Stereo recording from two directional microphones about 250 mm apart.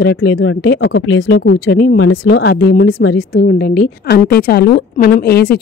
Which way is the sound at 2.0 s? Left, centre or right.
Left.